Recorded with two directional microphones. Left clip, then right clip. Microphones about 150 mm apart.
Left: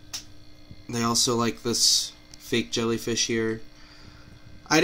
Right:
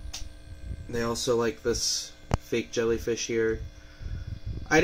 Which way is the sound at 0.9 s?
30° left (ahead or behind).